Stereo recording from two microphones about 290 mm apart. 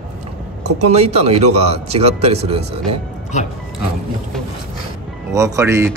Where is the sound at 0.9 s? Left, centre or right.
Right.